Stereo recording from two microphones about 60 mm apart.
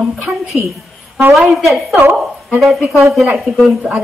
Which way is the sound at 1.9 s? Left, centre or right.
Right.